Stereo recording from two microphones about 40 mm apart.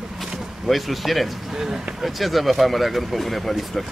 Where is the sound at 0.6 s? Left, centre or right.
Centre.